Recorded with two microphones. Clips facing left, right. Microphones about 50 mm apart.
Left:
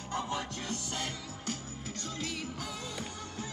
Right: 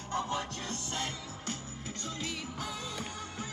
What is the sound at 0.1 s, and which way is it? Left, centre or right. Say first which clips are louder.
Music: right 1 dB; right.